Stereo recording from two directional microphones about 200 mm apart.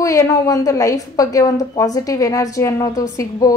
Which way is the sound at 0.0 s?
15° left (ahead or behind).